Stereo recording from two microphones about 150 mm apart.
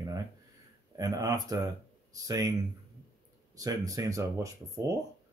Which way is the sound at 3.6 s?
25° right (ahead or behind).